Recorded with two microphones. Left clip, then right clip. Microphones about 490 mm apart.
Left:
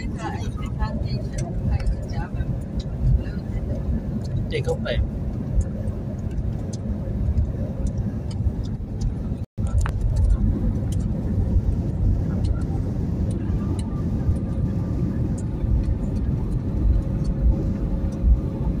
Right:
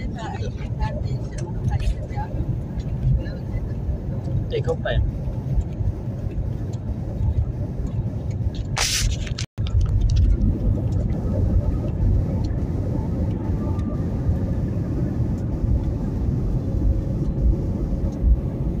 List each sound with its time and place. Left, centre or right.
4.5 s speech: right